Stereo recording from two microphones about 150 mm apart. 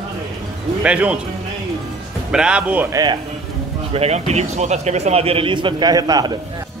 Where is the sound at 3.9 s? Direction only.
45° right (ahead or behind); by 6.3 s 25° right (ahead or behind).